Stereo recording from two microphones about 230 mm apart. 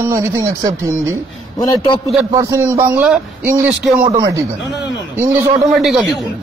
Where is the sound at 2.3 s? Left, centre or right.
Centre.